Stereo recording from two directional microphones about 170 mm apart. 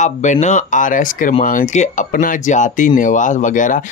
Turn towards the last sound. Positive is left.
turn(degrees=50)  # may be behind; listen again after turning